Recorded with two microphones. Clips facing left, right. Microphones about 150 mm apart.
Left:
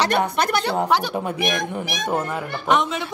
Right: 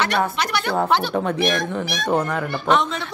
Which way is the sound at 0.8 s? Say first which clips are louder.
Right 1 dB; 10° left (ahead or behind).